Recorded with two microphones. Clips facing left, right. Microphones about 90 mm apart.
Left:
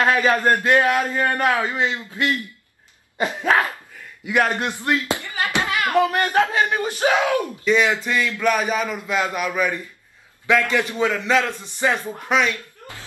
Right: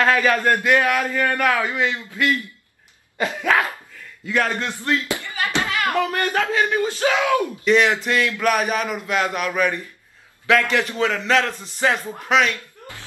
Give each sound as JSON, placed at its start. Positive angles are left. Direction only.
{"t": 0.0, "sound": "a man's voice", "side_deg": 20}
{"t": 7.6, "sound": "a man's voice", "side_deg": 0}